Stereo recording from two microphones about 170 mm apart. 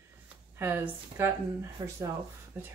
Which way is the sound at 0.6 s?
15° right (ahead or behind).